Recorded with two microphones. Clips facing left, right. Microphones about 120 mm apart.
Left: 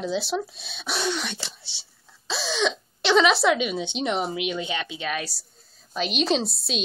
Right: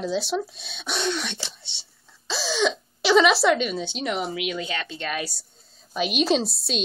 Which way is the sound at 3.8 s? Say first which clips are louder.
Left 2 dB; 20° left (ahead or behind).